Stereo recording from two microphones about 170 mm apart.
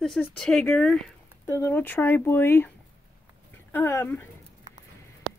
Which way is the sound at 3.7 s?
15° left (ahead or behind).